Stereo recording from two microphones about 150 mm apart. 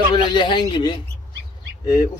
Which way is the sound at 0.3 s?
30° left (ahead or behind).